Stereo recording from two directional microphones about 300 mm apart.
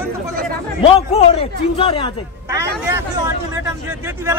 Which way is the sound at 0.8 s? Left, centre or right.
Centre.